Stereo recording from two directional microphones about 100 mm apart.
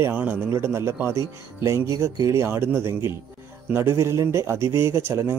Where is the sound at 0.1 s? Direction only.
15° right (ahead or behind).